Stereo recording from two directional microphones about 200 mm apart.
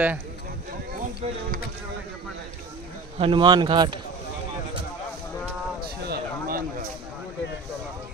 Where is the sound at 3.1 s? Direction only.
25° right (ahead or behind).